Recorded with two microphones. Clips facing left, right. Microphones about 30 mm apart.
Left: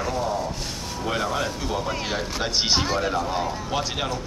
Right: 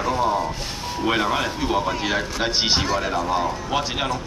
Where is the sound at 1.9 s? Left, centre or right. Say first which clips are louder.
Right 3 dB; centre.